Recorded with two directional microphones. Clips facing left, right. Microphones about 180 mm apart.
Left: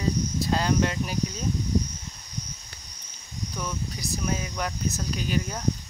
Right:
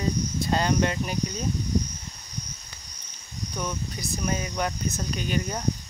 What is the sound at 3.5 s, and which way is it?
Cricket, centre (ahead or behind).